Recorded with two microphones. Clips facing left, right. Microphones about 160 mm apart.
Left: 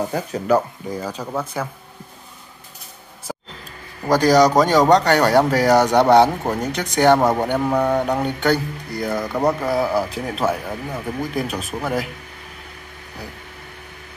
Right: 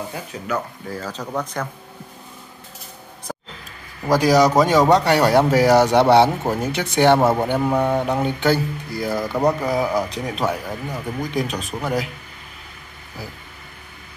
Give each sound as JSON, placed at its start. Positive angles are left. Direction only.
{"t": 0.1, "sound": "speech", "side_deg": 40}
{"t": 0.8, "sound": "speech", "side_deg": 15}
{"t": 4.1, "sound": "speech", "side_deg": -5}